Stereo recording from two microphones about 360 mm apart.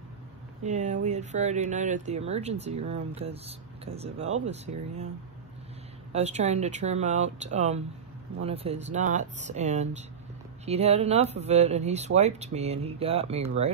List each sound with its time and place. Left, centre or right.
0.7 s speech: centre
6.1 s speech: centre